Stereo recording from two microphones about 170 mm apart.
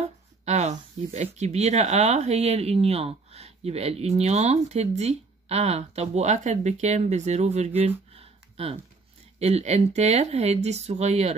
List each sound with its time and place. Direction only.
0.0 s speech: 40° right (ahead or behind)
8.1 s a sound: 35° right (ahead or behind)
9.4 s speech: 40° right (ahead or behind)